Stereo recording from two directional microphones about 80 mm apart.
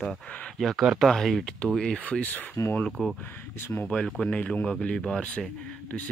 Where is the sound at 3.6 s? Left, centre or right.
Left.